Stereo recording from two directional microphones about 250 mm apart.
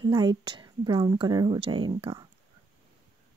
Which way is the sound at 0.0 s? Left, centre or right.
Centre.